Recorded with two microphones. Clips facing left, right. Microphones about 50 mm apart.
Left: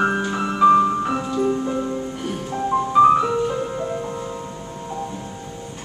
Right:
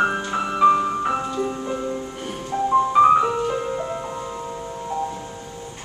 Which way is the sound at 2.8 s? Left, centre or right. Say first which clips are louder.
Left 2 dB; centre.